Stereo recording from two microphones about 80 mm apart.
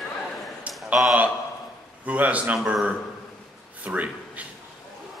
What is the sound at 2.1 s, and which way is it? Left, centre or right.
Speech, centre.